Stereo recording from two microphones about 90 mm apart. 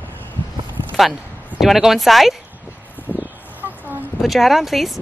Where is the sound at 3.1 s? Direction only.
20° right (ahead or behind).